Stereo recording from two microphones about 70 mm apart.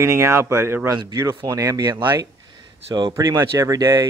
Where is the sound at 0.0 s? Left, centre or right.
Right.